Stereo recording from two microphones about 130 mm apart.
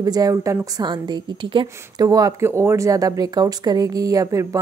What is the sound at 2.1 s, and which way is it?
Speech, 25° right (ahead or behind).